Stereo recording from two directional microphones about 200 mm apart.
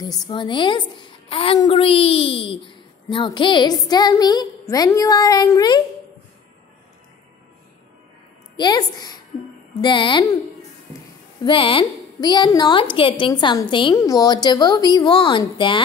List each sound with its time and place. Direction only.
0.0 s a woman's voice: 20° left (ahead or behind)
8.5 s a woman's voice: 20° left (ahead or behind)
11.4 s a woman's voice: 25° left (ahead or behind)